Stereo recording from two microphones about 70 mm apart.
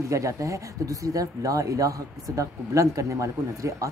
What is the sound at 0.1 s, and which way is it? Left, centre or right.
A woman's voice, right.